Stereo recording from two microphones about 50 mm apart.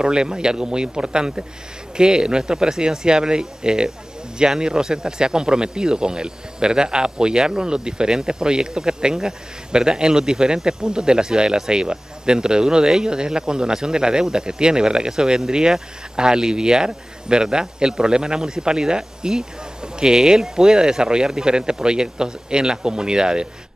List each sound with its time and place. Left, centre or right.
0.0 s speech: centre